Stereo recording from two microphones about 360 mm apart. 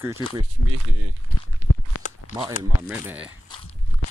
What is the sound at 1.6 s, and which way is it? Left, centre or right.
Walk, right.